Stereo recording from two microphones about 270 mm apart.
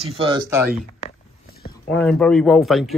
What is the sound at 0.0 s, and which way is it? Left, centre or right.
Speech, centre.